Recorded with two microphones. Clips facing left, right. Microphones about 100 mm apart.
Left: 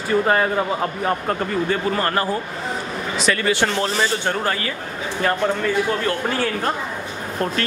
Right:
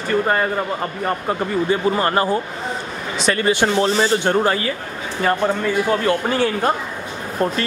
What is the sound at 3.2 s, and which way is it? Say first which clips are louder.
Speech: right 3 dB; 20° right (ahead or behind).